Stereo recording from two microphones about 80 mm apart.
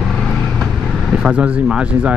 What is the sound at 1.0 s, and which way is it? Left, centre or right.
Speech, centre.